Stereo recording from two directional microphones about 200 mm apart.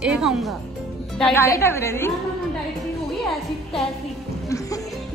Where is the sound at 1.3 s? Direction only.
15° left (ahead or behind).